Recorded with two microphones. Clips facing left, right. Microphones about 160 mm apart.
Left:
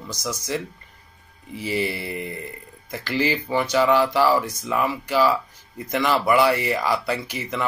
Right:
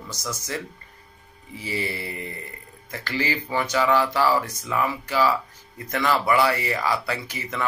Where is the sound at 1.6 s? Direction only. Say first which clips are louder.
Left 4 dB; 15° left (ahead or behind).